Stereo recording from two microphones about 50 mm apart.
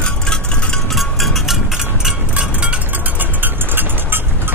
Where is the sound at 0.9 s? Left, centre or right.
Centre.